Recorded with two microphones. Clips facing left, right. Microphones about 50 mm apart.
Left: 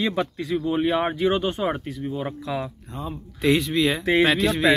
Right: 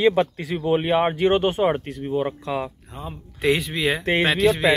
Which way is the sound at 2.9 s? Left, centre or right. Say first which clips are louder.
Left 3 dB; centre.